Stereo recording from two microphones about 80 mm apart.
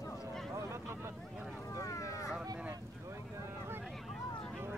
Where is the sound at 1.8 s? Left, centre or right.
Left.